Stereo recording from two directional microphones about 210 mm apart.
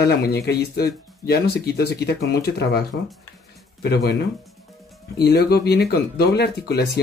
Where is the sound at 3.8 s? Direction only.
50° left (ahead or behind).